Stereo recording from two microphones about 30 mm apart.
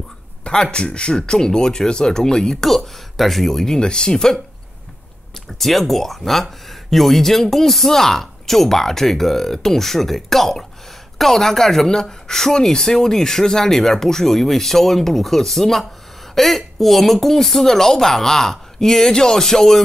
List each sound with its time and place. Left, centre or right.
0.5 s speech: left
2.6 s speech: centre
3.6 s speech: left
5.3 s speech: centre